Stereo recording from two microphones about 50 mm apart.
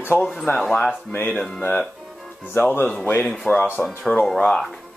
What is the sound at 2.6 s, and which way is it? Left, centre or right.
Speech, left.